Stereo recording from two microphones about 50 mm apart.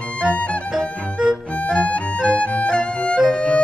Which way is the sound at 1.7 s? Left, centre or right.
Left.